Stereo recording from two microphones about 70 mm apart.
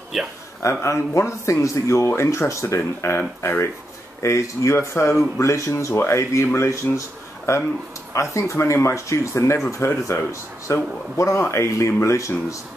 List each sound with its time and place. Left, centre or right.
0.1 s speech: centre
0.6 s speech: left